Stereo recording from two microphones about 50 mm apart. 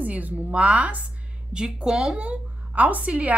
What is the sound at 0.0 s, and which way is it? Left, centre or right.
A woman's voice, right.